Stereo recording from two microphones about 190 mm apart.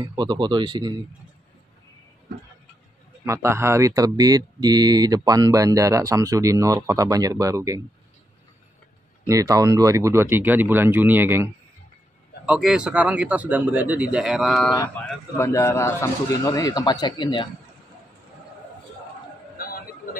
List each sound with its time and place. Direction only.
0.1 s speech: 25° right (ahead or behind)
3.3 s speech: 15° right (ahead or behind)
9.2 s a man's voice: 15° right (ahead or behind); by 14.7 s centre (ahead or behind)
15.3 s speech: 15° left (ahead or behind)
19.6 s a sound: 50° left (ahead or behind)